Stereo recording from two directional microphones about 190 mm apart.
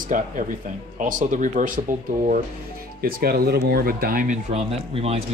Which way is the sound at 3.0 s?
50° right (ahead or behind).